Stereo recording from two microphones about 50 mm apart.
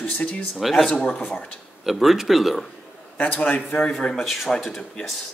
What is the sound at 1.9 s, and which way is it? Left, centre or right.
Speech, centre.